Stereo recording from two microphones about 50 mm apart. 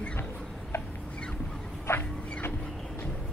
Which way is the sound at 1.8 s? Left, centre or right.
Left.